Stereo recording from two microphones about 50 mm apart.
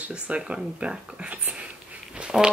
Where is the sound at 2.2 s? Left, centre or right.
Centre.